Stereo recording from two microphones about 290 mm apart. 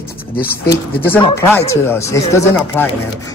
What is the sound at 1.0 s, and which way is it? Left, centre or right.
Speech, centre.